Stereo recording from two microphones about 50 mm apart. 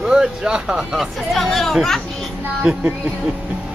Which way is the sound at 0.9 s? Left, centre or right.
Centre.